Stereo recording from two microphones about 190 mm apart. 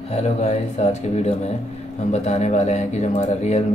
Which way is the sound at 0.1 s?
35° left (ahead or behind).